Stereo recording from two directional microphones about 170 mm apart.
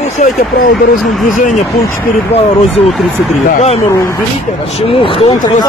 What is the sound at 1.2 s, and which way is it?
Speech, 50° left (ahead or behind).